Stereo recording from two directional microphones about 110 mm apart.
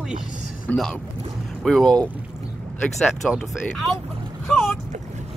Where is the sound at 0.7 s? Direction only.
15° left (ahead or behind).